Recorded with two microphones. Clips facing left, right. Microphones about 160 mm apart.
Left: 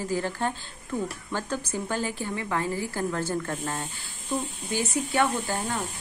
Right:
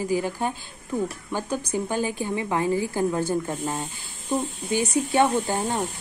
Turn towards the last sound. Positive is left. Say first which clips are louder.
# right 4 dB
turn(degrees=-20)  # may be behind; listen again after turning